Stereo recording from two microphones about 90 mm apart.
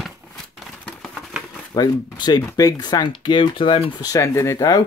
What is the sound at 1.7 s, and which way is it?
Speech, 50° left (ahead or behind).